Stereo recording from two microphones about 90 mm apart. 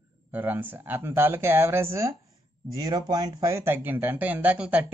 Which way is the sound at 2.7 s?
45° right (ahead or behind).